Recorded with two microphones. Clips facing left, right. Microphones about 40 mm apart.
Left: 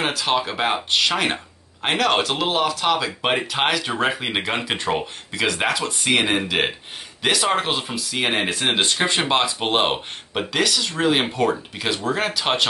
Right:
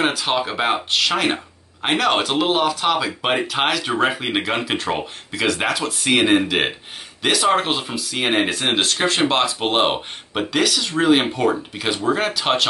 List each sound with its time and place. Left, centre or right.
0.0 s speech: centre
8.8 s speech: centre
9.7 s speech: centre